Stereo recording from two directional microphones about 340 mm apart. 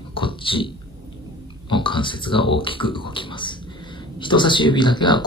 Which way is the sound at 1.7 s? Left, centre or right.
Centre.